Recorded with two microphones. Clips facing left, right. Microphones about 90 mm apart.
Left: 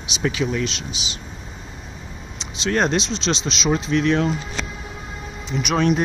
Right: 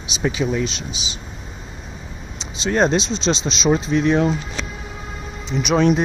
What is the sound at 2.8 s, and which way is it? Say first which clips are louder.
Speech: right 3 dB; 30° right (ahead or behind).